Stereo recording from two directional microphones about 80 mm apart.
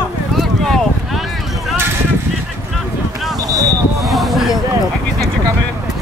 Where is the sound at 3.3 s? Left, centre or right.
Right.